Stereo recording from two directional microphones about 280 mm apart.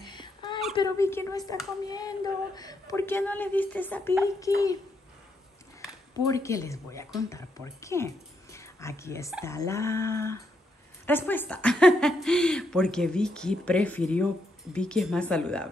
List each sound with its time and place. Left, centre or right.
0.0 s a sound: centre
0.7 s a woman's voice: centre
6.1 s a woman's voice: centre